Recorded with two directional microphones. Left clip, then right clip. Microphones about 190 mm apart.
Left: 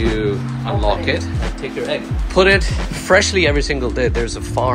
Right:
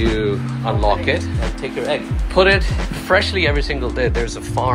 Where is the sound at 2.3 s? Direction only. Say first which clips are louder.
Left 1 dB; 20° left (ahead or behind).